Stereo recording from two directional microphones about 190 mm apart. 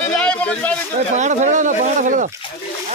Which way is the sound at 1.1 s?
40° right (ahead or behind).